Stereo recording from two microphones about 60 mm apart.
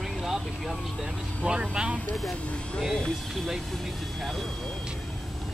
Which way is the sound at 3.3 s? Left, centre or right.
Centre.